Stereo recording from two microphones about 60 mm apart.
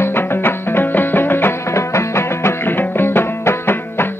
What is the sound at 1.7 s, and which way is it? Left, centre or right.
Music, left.